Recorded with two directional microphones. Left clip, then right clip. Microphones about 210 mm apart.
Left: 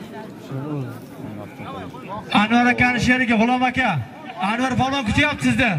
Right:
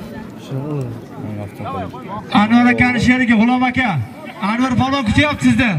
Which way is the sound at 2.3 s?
20° left (ahead or behind).